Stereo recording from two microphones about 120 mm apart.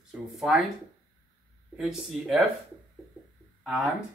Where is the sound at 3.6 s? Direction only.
5° right (ahead or behind).